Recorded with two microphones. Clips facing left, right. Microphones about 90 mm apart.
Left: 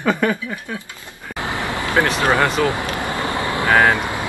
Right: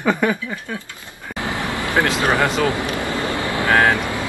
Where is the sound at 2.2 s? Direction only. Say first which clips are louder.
Left 2 dB; 20° right (ahead or behind).